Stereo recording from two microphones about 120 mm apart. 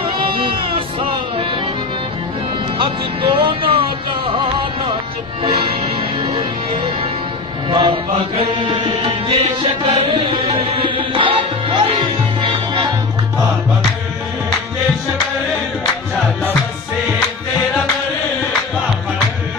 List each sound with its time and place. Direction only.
0.0 s music: 45° right (ahead or behind)
2.8 s music: 50° right (ahead or behind)